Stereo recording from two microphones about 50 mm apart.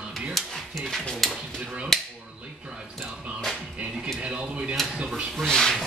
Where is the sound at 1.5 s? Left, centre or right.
Right.